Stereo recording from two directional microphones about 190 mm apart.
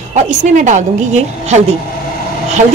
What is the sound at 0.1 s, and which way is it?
A woman's voice, 40° right (ahead or behind).